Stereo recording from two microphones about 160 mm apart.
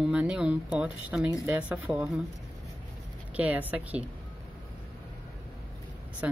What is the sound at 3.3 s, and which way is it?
Speech, 10° right (ahead or behind).